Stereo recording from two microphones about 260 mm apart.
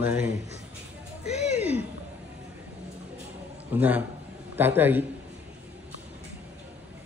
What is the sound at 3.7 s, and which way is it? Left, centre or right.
Speech, centre.